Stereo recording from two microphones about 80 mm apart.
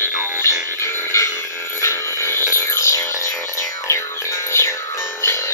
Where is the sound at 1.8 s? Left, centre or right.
Left.